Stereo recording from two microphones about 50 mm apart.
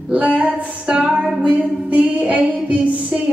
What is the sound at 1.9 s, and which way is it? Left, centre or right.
Child singing, right.